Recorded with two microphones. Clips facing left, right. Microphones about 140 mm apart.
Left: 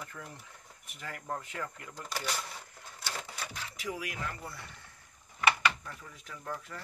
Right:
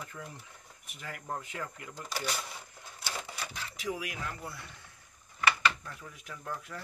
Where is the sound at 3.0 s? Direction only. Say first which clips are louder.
Right 1 dB; 5° right (ahead or behind).